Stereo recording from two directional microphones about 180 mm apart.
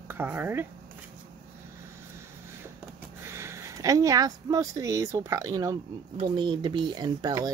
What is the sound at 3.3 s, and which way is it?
Speech, 15° right (ahead or behind).